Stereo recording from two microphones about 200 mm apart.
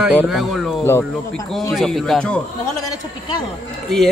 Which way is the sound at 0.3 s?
Centre (ahead or behind).